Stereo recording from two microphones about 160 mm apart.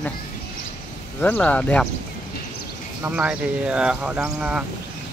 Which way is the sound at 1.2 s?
10° left (ahead or behind).